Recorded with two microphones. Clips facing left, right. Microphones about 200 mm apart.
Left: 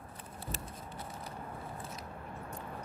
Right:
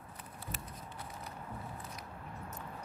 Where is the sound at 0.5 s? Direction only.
30° left (ahead or behind).